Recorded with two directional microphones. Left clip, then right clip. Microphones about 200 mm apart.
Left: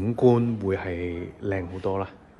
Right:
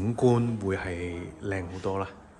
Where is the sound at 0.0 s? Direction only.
15° right (ahead or behind).